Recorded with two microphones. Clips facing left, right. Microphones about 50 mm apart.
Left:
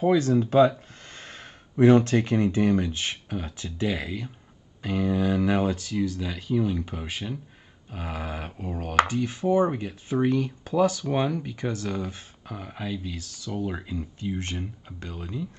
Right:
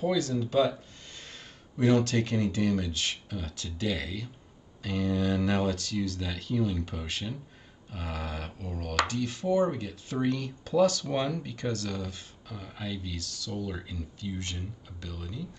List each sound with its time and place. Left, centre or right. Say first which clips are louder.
0.0 s speech: left 7 dB; left